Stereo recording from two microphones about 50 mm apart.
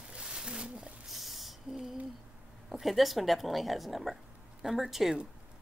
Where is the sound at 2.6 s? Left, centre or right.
Centre.